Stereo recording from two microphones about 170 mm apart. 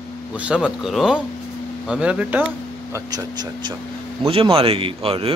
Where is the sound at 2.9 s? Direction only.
25° right (ahead or behind).